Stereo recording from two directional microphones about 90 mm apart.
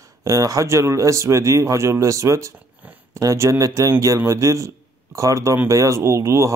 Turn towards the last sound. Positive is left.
turn(degrees=-35)  # may be behind; listen again after turning